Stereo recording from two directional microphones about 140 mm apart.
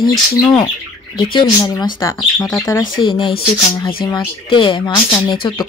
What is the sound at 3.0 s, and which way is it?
Speech, 40° left (ahead or behind).